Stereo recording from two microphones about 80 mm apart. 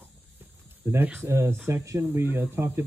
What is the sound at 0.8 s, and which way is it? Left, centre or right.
A man's voice, right.